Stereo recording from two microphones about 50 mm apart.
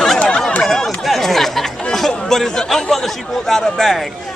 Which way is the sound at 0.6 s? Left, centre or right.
Centre.